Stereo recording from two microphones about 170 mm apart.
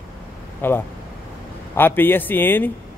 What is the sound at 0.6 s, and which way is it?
A man's voice, 10° left (ahead or behind).